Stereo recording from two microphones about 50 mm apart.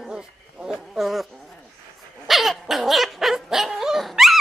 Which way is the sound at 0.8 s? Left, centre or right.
Centre.